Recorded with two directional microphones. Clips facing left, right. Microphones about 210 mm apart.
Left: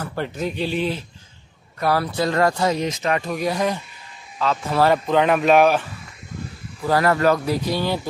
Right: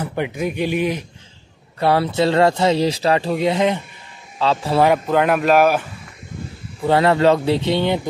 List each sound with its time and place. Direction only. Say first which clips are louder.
0.0 s speech: right 3 dB; 15° right (ahead or behind)
1.8 s speech: right 4 dB; 25° right (ahead or behind)
4.8 s speech: even; 5° right (ahead or behind)
6.8 s speech: right 3 dB; 25° right (ahead or behind)